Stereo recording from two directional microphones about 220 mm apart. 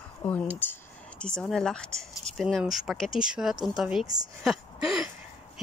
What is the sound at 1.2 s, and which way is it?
Speech, 5° left (ahead or behind).